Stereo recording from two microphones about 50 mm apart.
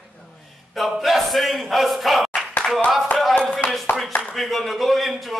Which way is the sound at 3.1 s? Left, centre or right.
Left.